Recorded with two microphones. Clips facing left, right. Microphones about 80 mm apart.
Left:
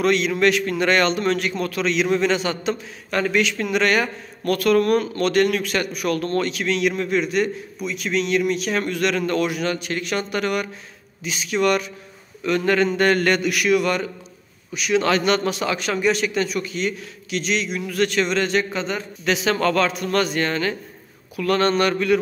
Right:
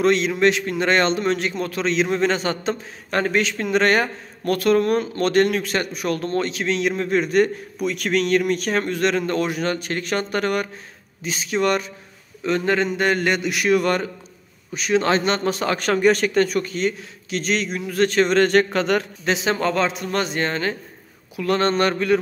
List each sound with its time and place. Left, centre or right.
0.0 s a man's voice: right
19.2 s a man's voice: right